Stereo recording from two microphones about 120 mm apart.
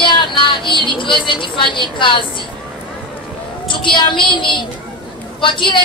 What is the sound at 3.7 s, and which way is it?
A woman's voice, 45° left (ahead or behind).